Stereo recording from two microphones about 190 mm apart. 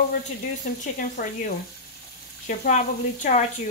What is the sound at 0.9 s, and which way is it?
Speech, 45° left (ahead or behind).